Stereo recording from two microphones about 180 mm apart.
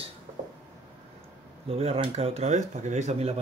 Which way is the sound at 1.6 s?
35° right (ahead or behind).